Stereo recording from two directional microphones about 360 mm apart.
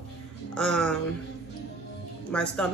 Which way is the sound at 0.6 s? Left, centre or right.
Centre.